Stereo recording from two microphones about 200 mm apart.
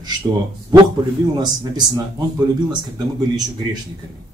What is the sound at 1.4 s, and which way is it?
Speech, 20° right (ahead or behind).